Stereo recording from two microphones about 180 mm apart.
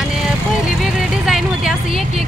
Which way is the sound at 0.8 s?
Centre (ahead or behind).